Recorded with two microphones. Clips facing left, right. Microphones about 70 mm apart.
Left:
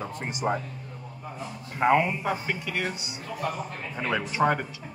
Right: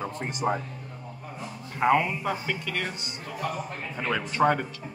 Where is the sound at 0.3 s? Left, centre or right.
Centre.